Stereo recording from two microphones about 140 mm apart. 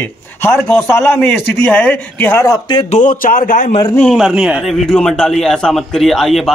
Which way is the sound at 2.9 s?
70° left (ahead or behind).